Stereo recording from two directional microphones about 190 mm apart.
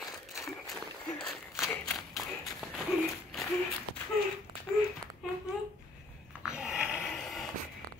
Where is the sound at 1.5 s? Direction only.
15° left (ahead or behind).